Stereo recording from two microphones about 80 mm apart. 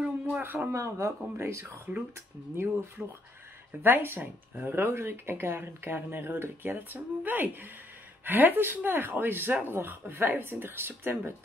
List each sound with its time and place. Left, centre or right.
0.0 s a sound: right
0.7 s speech: right
1.9 s speech: centre
3.0 s speech: centre
3.8 s speech: right